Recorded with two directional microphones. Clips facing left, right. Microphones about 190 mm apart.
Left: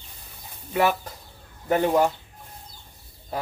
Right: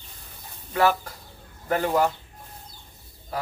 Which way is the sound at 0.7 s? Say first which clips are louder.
Right 1 dB; 20° left (ahead or behind).